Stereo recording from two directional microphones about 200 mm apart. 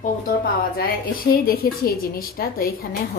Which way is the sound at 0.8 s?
45° left (ahead or behind).